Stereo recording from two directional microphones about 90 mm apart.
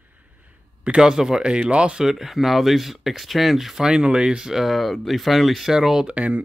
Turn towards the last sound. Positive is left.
turn(degrees=-15)  # may be behind; listen again after turning